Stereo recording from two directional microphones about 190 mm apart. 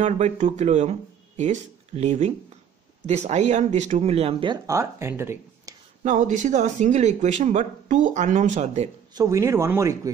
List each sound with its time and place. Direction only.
0.0 s speech: 40° right (ahead or behind); by 5.8 s 15° right (ahead or behind)
6.0 s speech: 40° right (ahead or behind)
9.1 s speech: 20° right (ahead or behind)